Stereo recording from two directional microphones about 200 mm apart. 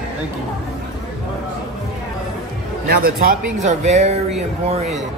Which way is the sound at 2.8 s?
50° right (ahead or behind).